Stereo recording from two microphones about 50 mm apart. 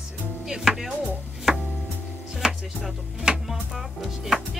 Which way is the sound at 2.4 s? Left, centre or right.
Centre.